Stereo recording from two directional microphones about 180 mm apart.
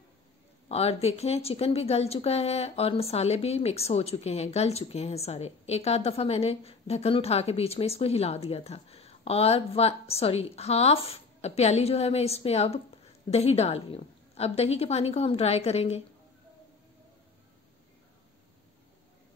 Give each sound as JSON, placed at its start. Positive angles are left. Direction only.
{"t": 0.7, "sound": "a woman's voice", "side_deg": 35}